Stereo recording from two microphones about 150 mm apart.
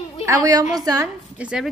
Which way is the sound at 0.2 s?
20° right (ahead or behind).